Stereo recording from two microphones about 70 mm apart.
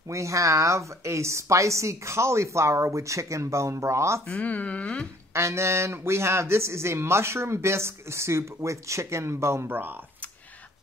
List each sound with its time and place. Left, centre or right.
0.1 s a woman's voice: right
4.3 s speech: left
5.3 s a man's voice: right
9.7 s speech: right